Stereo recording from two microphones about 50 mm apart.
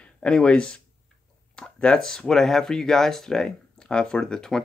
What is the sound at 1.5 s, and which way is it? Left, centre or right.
Speech, centre.